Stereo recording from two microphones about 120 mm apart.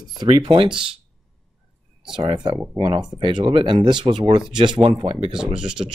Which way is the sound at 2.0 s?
45° right (ahead or behind).